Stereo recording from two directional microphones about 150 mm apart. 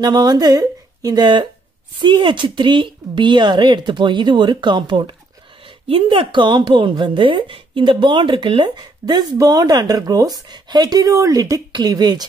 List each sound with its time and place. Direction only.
0.0 s a woman's voice: 30° right (ahead or behind)